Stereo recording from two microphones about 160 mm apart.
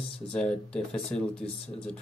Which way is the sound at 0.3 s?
5° left (ahead or behind).